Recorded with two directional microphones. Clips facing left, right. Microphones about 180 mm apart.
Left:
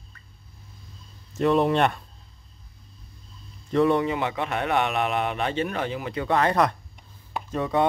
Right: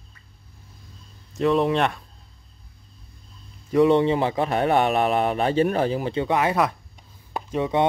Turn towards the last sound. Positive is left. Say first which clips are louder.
# right 2 dB
turn(degrees=-20)  # may be behind; listen again after turning